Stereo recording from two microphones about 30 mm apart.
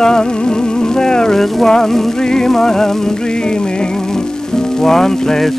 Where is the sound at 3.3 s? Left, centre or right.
Left.